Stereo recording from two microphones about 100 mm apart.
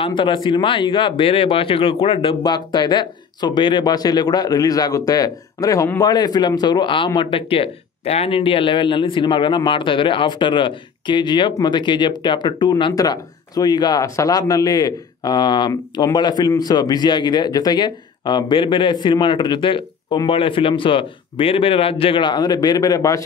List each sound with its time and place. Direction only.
0.0 s speech: 55° left (ahead or behind)
12.9 s speech: 40° left (ahead or behind)